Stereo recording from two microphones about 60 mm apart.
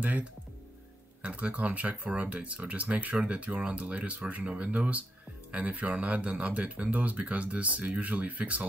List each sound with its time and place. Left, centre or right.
0.0 s speech: right